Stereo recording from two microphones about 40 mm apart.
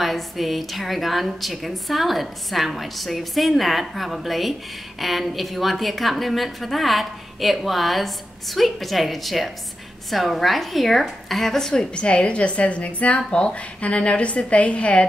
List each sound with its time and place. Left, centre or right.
0.0 s a woman's voice: centre
11.9 s a woman's voice: left